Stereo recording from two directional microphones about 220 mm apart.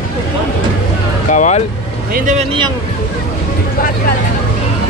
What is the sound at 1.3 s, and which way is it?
Speech, 35° left (ahead or behind).